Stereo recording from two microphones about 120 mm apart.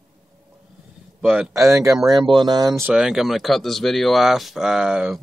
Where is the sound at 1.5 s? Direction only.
25° right (ahead or behind).